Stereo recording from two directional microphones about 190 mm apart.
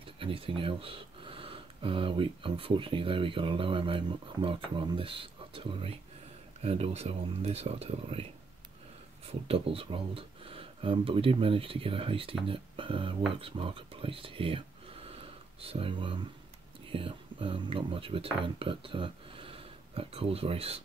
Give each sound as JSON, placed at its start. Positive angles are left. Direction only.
{"t": 0.0, "sound": "speech", "side_deg": -25}
{"t": 15.0, "sound": "a sound", "side_deg": -30}
{"t": 16.9, "sound": "speech", "side_deg": -30}